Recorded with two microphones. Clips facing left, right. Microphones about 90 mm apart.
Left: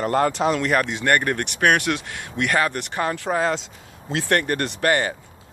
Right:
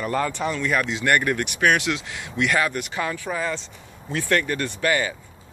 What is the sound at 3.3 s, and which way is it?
Speech, 75° left (ahead or behind).